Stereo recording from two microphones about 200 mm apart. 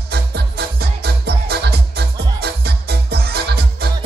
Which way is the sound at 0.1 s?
55° right (ahead or behind).